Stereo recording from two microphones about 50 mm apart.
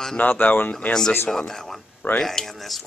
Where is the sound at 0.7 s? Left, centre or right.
Left.